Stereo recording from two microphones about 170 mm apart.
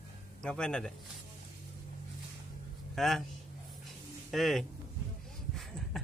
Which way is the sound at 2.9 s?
Centre (ahead or behind).